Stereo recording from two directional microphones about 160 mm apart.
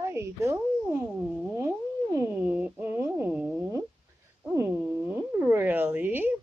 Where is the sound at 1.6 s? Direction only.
15° right (ahead or behind).